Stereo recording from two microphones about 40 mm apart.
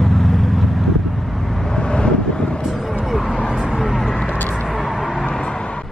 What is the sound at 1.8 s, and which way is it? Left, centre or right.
Vehicle, left.